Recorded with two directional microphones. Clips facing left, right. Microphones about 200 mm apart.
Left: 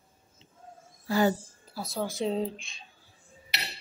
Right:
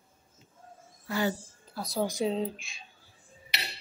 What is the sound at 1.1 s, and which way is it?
Speech, 40° left (ahead or behind).